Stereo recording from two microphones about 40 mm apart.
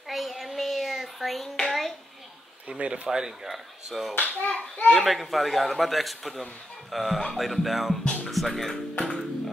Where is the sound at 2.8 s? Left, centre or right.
Right.